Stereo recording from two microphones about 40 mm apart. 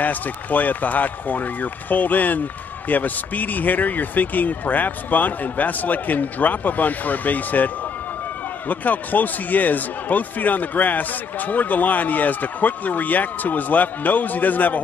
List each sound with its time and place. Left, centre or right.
0.0 s speech: left